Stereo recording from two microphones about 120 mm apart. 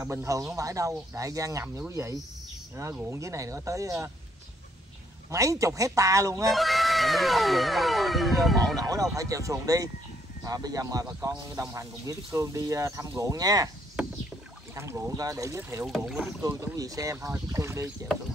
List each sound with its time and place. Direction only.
0.0 s speech: 25° right (ahead or behind)
5.3 s speech: 25° right (ahead or behind)
6.4 s music: centre (ahead or behind)
8.7 s speech: 30° right (ahead or behind)
14.8 s speech: 25° right (ahead or behind)
15.8 s speech: 5° right (ahead or behind)
16.4 s speech: 25° right (ahead or behind)